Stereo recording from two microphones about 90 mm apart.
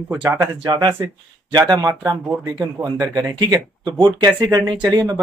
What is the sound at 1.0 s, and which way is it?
Speech, 45° right (ahead or behind).